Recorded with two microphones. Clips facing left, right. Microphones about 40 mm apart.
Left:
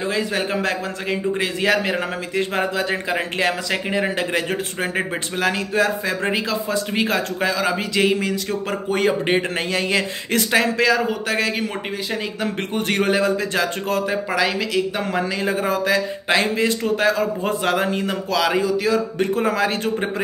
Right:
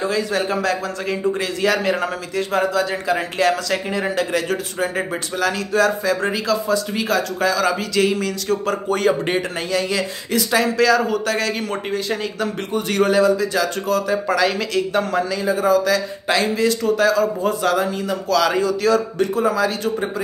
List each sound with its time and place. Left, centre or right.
0.1 s a man's voice: left
12.7 s a man's voice: left
14.3 s speech: centre
15.4 s a man's voice: left
18.3 s speech: centre
19.3 s a man's voice: left